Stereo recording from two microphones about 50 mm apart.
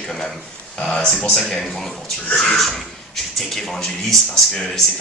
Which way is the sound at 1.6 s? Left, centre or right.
Centre.